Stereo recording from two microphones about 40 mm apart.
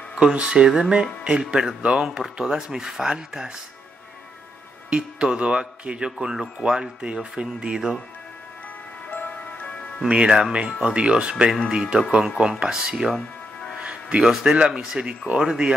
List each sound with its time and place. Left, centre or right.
0.2 s speech: right
0.7 s speech: centre
2.0 s speech: centre
4.8 s speech: right
9.1 s music: left
10.0 s speech: right
13.7 s music: right
14.2 s speech: centre